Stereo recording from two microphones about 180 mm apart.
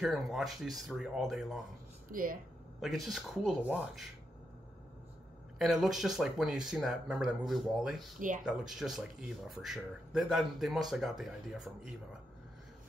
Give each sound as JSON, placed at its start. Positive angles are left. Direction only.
{"t": 0.0, "sound": "speech", "side_deg": 0}
{"t": 2.0, "sound": "speech", "side_deg": -50}
{"t": 2.8, "sound": "speech", "side_deg": 0}
{"t": 5.6, "sound": "speech", "side_deg": 0}